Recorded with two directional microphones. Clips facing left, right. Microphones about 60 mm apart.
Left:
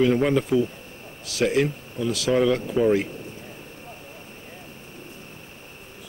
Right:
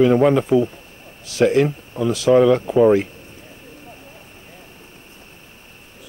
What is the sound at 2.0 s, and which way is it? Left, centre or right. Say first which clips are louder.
Speech: right 7 dB; right.